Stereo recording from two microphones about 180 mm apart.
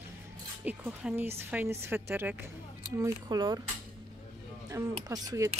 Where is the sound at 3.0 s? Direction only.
25° right (ahead or behind).